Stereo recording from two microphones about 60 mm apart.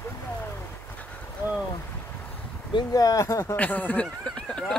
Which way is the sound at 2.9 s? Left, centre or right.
Left.